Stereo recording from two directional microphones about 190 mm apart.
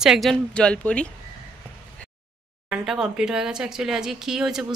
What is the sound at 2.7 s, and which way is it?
Speech, 5° right (ahead or behind).